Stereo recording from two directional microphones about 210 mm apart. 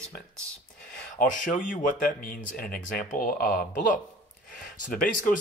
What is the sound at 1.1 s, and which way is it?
Speech, 40° left (ahead or behind).